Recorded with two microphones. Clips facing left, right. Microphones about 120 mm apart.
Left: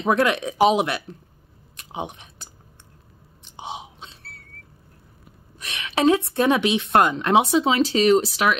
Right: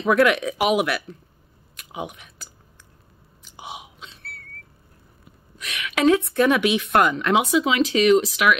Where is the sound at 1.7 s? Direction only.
30° left (ahead or behind).